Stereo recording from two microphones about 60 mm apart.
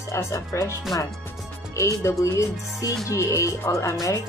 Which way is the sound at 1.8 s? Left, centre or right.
Left.